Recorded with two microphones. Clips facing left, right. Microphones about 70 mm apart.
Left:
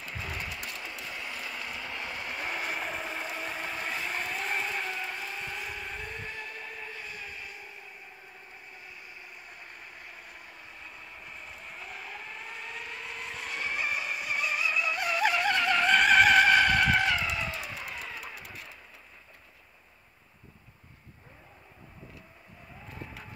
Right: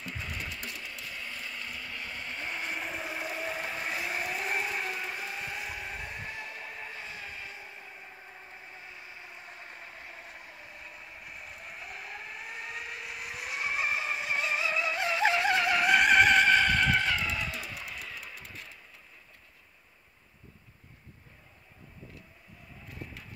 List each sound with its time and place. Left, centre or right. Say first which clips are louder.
0.1 s a sound: left 2 dB; centre
0.5 s vehicle: left 2 dB; centre; by 7.7 s right
8.7 s vehicle: right 1 dB; right
11.3 s applause: even; centre
13.4 s music: right 1 dB; centre
18.0 s a sound: left 2 dB; centre